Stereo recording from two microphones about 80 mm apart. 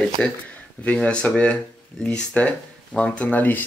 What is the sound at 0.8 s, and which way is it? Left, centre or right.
Speech, centre.